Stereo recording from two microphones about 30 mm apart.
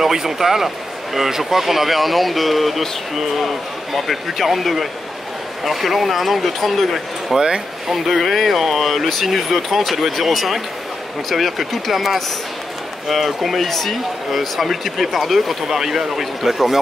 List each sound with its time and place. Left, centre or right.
0.0 s speech: centre
7.3 s speech: right
7.9 s speech: centre
15.6 s speech: centre